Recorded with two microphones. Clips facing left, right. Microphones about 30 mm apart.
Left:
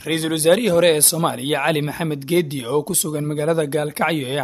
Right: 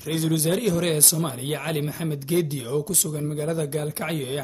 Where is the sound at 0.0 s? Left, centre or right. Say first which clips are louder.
Left 6 dB; left.